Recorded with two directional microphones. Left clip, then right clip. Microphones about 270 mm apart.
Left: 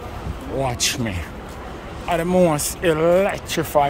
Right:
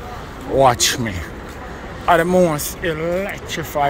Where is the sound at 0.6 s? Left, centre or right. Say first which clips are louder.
Right 9 dB; centre.